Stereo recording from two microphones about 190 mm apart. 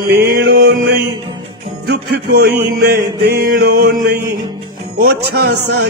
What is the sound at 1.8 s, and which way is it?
Music, 55° right (ahead or behind).